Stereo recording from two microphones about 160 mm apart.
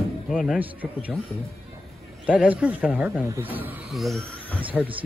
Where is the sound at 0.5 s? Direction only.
10° right (ahead or behind).